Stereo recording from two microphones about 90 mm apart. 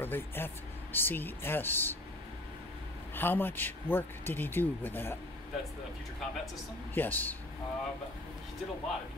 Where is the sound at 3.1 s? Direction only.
25° left (ahead or behind).